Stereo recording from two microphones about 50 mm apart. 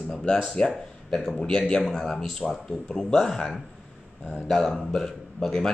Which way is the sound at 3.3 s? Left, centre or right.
Centre.